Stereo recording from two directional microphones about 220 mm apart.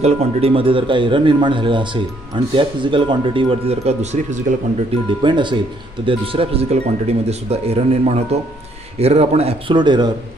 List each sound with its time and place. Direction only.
0.0 s speech: 25° right (ahead or behind)
5.2 s speech: 20° right (ahead or behind)